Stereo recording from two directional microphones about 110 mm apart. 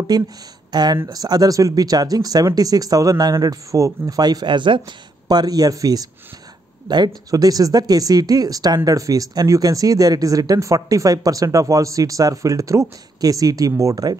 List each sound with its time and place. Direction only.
0.1 s speech: 35° right (ahead or behind)
7.2 s speech: 35° right (ahead or behind)